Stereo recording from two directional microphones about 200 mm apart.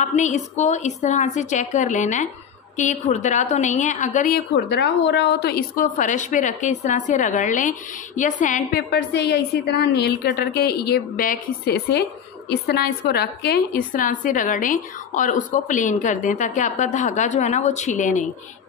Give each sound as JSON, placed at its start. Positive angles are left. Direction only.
{"t": 0.0, "sound": "a woman's voice", "side_deg": 35}
{"t": 4.6, "sound": "a woman's voice", "side_deg": 60}
{"t": 8.9, "sound": "a woman's voice", "side_deg": 55}